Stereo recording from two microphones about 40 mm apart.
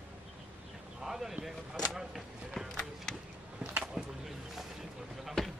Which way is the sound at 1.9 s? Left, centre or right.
Centre.